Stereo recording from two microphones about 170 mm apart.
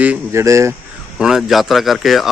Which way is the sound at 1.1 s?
5° right (ahead or behind).